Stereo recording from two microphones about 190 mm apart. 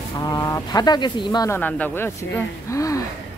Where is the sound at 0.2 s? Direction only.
20° left (ahead or behind).